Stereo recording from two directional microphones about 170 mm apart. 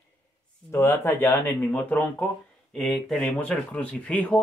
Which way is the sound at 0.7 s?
15° left (ahead or behind).